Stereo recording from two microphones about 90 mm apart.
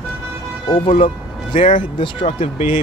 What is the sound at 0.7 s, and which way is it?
Speech, 90° left.